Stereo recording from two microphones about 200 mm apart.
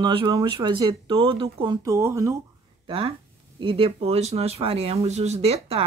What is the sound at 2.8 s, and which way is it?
Speech, 25° right (ahead or behind).